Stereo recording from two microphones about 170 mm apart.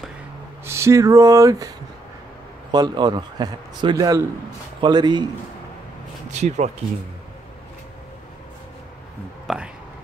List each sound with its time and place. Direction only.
0.7 s a man's voice: 15° right (ahead or behind)
2.7 s a man's voice: 25° right (ahead or behind)
6.3 s speech: 40° right (ahead or behind)
9.5 s speech: centre (ahead or behind)